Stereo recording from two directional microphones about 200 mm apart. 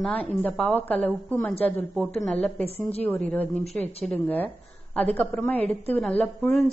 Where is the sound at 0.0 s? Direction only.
5° left (ahead or behind).